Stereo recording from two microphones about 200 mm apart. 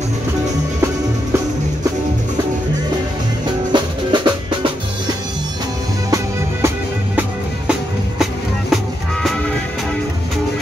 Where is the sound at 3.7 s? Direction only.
20° right (ahead or behind).